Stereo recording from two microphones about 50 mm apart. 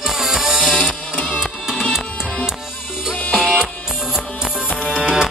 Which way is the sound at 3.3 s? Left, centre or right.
Centre.